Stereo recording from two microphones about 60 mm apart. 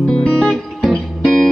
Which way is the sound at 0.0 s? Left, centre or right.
Centre.